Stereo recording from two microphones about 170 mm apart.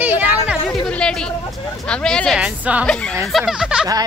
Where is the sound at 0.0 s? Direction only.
10° right (ahead or behind).